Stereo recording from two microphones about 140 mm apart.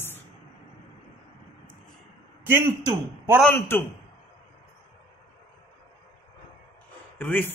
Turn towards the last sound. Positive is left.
turn(degrees=15)  # may be behind; listen again after turning